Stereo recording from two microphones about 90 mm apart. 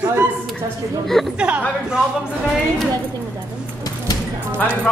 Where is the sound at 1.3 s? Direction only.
15° right (ahead or behind).